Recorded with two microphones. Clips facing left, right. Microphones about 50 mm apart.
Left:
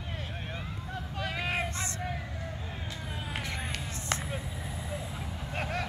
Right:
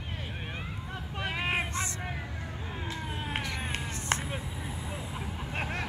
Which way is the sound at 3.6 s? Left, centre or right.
Right.